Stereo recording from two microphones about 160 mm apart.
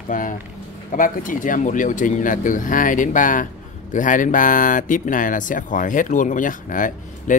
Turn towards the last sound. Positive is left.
turn(degrees=55)  # may be behind; listen again after turning